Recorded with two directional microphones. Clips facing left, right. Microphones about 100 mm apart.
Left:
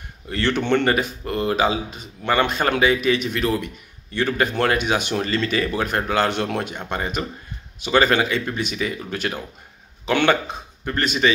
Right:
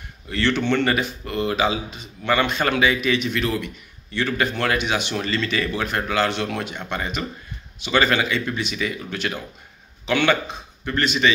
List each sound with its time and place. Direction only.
0.3 s a man's voice: 40° left (ahead or behind)